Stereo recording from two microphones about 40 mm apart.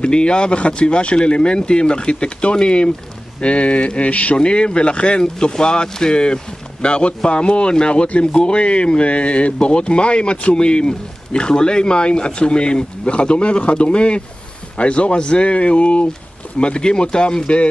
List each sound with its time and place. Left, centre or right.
0.0 s speech: left